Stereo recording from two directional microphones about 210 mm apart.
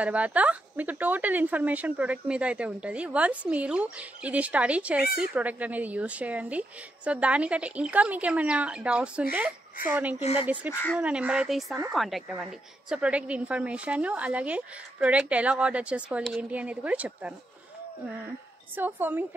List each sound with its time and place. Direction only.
0.0 s a woman's voice: 5° right (ahead or behind)
10.2 s speech: 25° left (ahead or behind)
11.0 s a woman's voice: 5° right (ahead or behind)
18.8 s speech: 10° right (ahead or behind)